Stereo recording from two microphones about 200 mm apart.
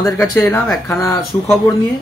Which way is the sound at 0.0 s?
10° left (ahead or behind).